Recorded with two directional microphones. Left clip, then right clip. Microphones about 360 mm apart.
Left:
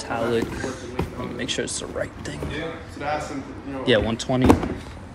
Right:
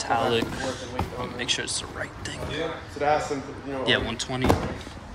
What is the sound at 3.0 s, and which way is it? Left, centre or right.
Speech, right.